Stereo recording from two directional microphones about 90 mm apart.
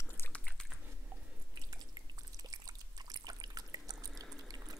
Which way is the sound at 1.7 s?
45° right (ahead or behind).